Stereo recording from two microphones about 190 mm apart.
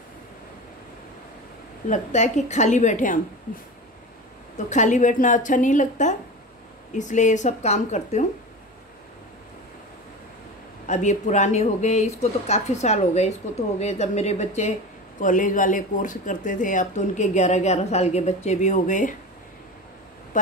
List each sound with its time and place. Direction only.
1.9 s speech: 40° left (ahead or behind)
4.6 s speech: 40° left (ahead or behind)
10.9 s speech: 40° left (ahead or behind)